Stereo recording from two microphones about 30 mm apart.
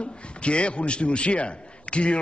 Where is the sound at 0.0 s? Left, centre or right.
Left.